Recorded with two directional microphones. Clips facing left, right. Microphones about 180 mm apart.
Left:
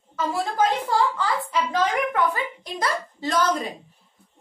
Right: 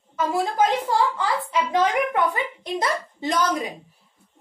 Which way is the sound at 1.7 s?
20° right (ahead or behind).